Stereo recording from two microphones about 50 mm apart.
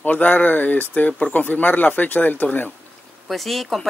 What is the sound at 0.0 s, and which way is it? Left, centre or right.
Speech, left.